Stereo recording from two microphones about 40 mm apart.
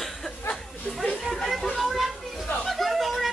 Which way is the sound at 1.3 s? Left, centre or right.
Centre.